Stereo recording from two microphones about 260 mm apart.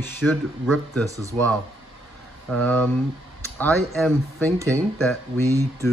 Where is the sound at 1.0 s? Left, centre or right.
Centre.